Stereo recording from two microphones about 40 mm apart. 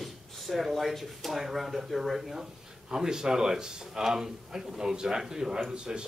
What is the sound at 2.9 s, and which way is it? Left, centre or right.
A man's voice, centre.